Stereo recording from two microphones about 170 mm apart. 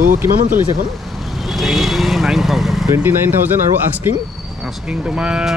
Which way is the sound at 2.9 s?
15° right (ahead or behind).